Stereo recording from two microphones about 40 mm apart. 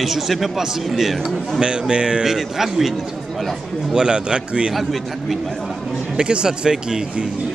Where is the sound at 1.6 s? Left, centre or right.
Right.